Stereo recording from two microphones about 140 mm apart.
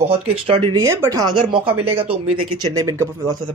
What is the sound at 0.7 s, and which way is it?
Speech, 25° right (ahead or behind).